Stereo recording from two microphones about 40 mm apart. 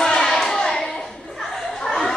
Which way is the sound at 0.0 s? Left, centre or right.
Centre.